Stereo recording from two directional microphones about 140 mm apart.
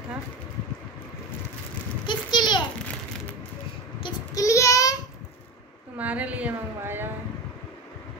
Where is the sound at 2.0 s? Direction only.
30° left (ahead or behind).